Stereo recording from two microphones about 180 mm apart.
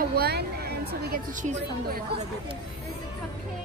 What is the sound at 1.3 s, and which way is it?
Speech, 45° right (ahead or behind).